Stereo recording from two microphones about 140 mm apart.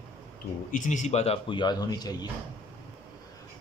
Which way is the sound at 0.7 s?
65° left (ahead or behind).